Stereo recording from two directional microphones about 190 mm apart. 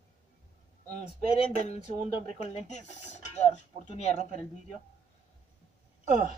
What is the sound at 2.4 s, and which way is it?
Speech, 35° left (ahead or behind).